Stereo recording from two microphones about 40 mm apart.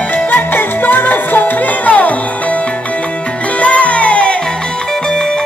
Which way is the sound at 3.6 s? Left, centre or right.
Left.